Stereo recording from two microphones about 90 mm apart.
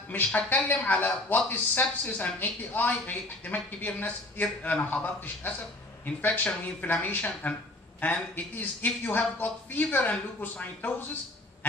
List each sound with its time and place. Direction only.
0.1 s speech: 20° left (ahead or behind)